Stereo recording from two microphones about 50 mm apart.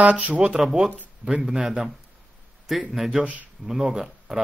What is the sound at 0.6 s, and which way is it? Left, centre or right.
Speech, centre.